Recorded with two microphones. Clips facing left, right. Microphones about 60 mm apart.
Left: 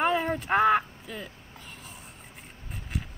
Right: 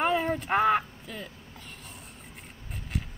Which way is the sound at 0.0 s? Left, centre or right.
Centre.